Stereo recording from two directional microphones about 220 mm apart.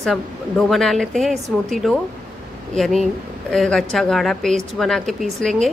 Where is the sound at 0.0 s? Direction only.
Centre (ahead or behind).